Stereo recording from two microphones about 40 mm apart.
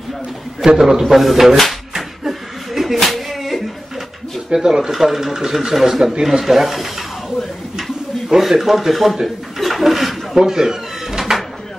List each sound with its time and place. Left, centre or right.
0.7 s speech: centre
2.0 s chuckle: centre
3.1 s music: centre
4.6 s speech: centre
10.3 s a sound: centre